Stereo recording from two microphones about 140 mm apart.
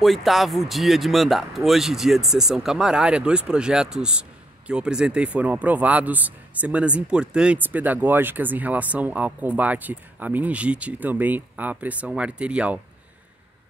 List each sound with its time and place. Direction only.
0.0 s speech: centre (ahead or behind)